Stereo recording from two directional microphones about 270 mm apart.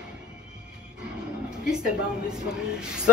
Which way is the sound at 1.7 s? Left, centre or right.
Centre.